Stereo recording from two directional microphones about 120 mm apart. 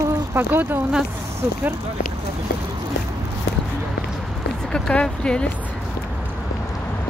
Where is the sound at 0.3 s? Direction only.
15° right (ahead or behind).